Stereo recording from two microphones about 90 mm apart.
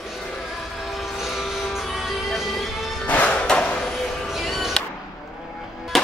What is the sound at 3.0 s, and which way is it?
Music, 15° left (ahead or behind).